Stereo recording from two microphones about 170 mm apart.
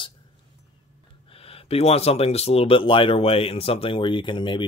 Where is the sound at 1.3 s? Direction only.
35° left (ahead or behind).